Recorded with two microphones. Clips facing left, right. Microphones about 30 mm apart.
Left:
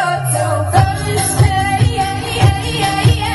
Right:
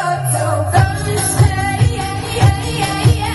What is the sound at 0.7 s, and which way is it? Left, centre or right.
Music, left.